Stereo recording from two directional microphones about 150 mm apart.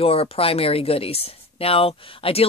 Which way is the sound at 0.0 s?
40° left (ahead or behind).